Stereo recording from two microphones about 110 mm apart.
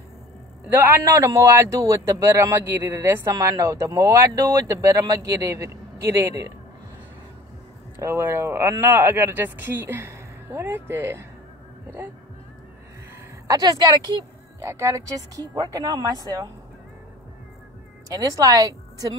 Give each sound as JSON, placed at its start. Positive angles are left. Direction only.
{"t": 0.7, "sound": "a man's voice", "side_deg": -15}
{"t": 8.0, "sound": "a man's voice", "side_deg": -20}
{"t": 13.5, "sound": "speech", "side_deg": -35}
{"t": 14.6, "sound": "speech", "side_deg": -25}
{"t": 18.0, "sound": "a woman's voice", "side_deg": -30}